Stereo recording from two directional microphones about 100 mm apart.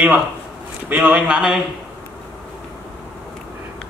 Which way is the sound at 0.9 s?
15° right (ahead or behind).